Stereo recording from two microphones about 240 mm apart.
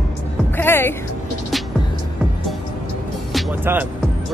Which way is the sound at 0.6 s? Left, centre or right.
Centre.